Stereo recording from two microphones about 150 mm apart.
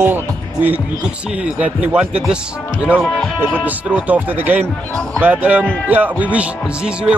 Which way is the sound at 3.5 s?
10° right (ahead or behind).